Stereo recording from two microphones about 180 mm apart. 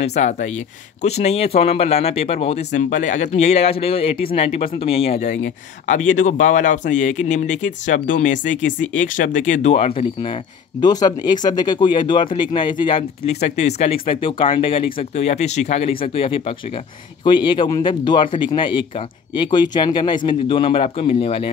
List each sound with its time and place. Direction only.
0.0 s speech: 40° left (ahead or behind)
10.8 s speech: 20° left (ahead or behind)